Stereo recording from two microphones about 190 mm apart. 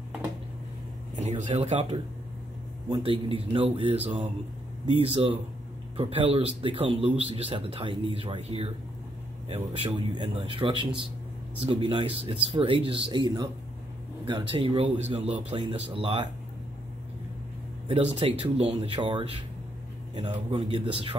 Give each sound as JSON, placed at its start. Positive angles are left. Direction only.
{"t": 1.1, "sound": "a man's voice", "side_deg": -35}
{"t": 9.8, "sound": "a man's voice", "side_deg": -25}
{"t": 17.8, "sound": "a man's voice", "side_deg": -35}